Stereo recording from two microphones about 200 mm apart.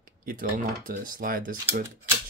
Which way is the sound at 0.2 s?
45° right (ahead or behind).